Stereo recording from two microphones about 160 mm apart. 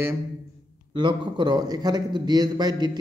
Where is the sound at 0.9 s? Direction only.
30° right (ahead or behind).